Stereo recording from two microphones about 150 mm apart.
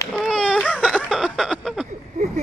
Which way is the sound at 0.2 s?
5° left (ahead or behind).